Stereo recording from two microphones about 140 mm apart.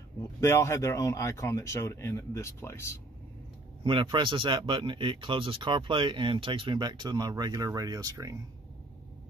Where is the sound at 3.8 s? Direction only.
35° right (ahead or behind).